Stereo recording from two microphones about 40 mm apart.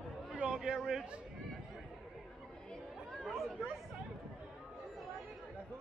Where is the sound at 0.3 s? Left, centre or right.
Right.